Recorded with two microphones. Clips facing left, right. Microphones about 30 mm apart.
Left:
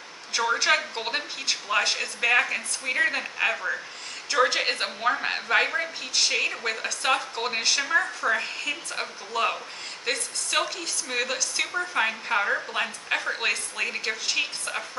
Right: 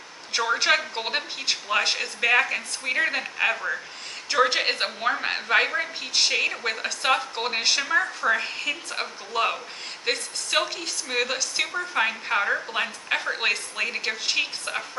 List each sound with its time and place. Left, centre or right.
0.6 s a woman's voice: centre